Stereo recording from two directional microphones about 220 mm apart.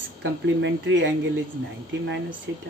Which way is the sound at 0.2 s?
55° right (ahead or behind).